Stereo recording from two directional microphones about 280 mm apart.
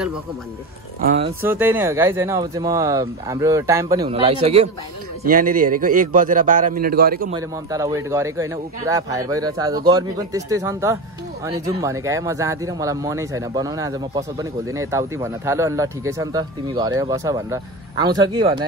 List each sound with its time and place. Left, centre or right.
1.0 s a man's voice: right
1.4 s a man's voice: centre; by 7.3 s right
7.3 s speech: centre